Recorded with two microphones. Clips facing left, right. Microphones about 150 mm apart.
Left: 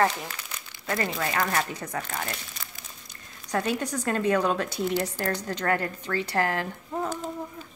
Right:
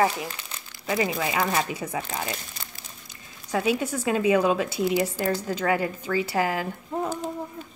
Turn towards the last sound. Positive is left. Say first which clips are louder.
# right 2 dB
turn(degrees=-10)  # may be behind; listen again after turning